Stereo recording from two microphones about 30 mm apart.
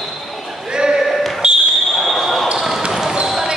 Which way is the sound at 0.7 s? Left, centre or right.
Right.